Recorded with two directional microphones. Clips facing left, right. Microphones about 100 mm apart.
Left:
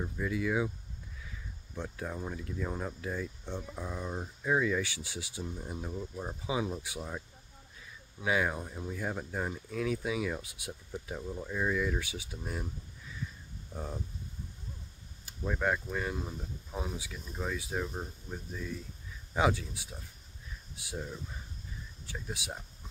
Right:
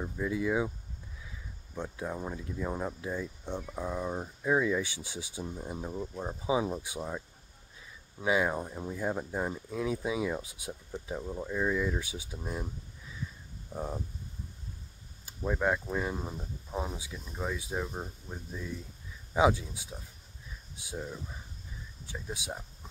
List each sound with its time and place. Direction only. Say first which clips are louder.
0.3 s speech: right 2 dB; 25° right (ahead or behind)
1.8 s speech: right 2 dB; 15° right (ahead or behind)
8.2 s speech: right 2 dB; 20° right (ahead or behind)
11.4 s speech: right 2 dB; 5° right (ahead or behind)
11.8 s speech: right 1 dB; 20° right (ahead or behind)
13.7 s speech: right 4 dB; 20° right (ahead or behind)
15.4 s speech: right 2 dB; 10° right (ahead or behind)
22.0 s speech: right 2 dB; 15° right (ahead or behind)